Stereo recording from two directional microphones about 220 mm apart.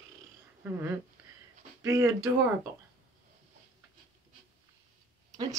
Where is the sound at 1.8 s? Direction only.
15° right (ahead or behind).